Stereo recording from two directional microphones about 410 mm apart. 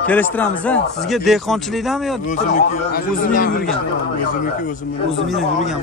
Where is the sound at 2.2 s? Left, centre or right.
Centre.